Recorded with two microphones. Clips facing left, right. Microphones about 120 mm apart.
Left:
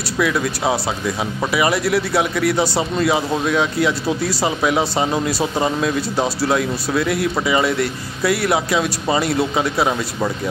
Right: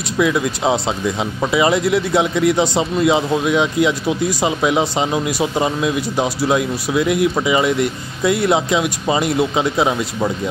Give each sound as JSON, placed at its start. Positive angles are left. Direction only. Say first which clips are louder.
{"t": 0.2, "sound": "speech", "louder": "right 2 dB", "side_deg": -20}